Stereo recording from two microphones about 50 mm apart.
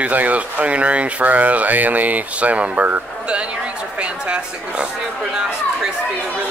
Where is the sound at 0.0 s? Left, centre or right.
Right.